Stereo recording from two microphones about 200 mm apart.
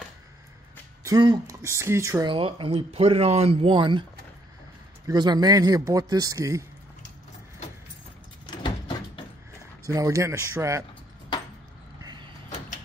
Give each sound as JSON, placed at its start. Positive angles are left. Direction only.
{"t": 1.0, "sound": "speech", "side_deg": -20}
{"t": 5.0, "sound": "speech", "side_deg": -20}
{"t": 8.5, "sound": "vehicle", "side_deg": 25}
{"t": 9.8, "sound": "speech", "side_deg": -15}
{"t": 12.0, "sound": "vehicle", "side_deg": -20}